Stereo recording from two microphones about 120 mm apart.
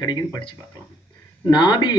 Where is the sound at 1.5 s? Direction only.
35° left (ahead or behind).